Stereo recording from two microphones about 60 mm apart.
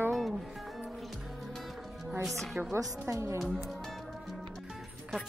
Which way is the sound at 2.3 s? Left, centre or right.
Centre.